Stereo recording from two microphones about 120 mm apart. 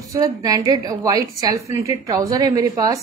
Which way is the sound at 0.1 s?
30° right (ahead or behind).